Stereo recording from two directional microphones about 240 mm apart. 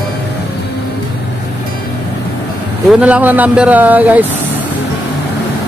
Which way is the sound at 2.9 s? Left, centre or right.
Centre.